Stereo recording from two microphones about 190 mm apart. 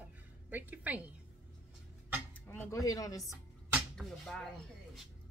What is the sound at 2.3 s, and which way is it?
Speech, 10° left (ahead or behind).